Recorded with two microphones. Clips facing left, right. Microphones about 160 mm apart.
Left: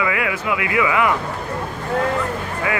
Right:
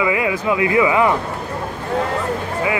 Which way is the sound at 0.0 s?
25° right (ahead or behind).